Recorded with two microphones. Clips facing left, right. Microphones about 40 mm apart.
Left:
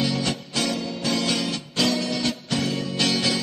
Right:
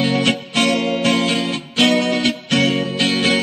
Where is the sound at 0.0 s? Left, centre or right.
Right.